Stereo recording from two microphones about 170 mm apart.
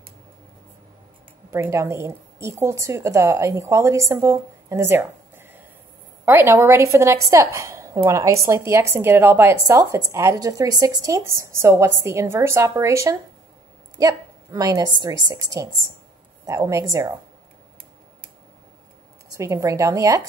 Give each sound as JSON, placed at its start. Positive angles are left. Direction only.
{"t": 1.5, "sound": "a woman's voice", "side_deg": -15}
{"t": 19.3, "sound": "a woman's voice", "side_deg": -20}